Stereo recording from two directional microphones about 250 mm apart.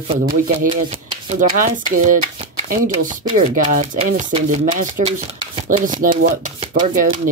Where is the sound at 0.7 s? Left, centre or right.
Right.